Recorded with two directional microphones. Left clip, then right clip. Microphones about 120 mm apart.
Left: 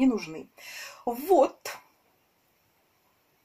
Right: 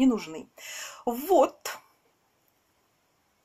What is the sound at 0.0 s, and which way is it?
Speech, 15° right (ahead or behind).